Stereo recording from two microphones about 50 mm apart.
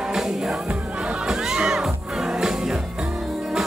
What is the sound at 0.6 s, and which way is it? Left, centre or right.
Music, centre.